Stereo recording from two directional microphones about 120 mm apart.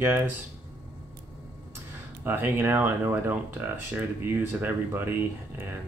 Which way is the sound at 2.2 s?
20° right (ahead or behind).